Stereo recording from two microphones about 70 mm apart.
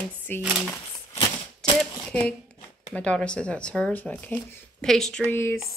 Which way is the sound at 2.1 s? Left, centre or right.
Centre.